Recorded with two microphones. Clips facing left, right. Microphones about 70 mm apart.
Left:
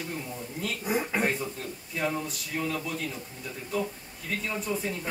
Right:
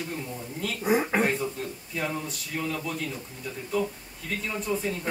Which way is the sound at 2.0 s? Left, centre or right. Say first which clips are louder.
Left 1 dB; centre.